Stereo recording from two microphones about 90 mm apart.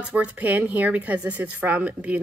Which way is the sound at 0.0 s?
15° right (ahead or behind).